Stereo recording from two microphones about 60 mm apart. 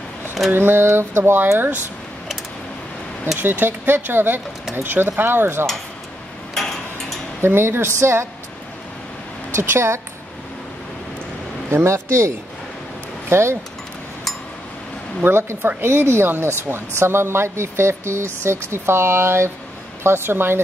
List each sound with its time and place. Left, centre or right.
0.5 s speech: right
3.3 s speech: right
6.5 s a sound: centre
7.4 s speech: right
9.6 s speech: right
11.7 s speech: right
15.2 s speech: right